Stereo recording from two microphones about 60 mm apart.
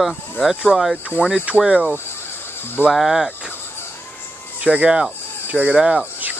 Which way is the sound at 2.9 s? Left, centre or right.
Centre.